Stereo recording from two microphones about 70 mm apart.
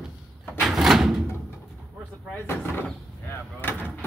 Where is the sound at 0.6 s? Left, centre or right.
Centre.